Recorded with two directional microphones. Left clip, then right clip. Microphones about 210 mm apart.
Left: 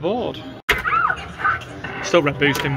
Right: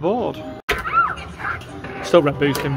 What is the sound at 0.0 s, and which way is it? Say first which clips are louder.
Music: right 2 dB; 15° right (ahead or behind).